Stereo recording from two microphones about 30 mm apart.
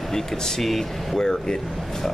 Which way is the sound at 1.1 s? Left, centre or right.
Left.